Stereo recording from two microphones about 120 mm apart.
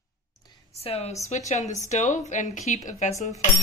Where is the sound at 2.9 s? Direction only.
70° left (ahead or behind).